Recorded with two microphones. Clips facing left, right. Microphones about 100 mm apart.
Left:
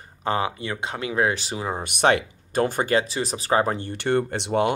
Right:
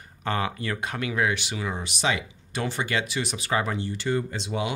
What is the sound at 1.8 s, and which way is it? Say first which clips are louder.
Speech: left 10 dB; 55° left (ahead or behind).